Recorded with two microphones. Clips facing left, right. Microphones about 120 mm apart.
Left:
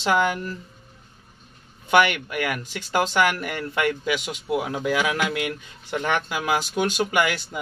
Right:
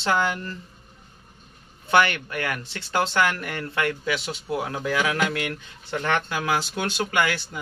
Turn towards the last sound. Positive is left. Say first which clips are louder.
# left 1 dB
turn(degrees=20)  # may be behind; listen again after turning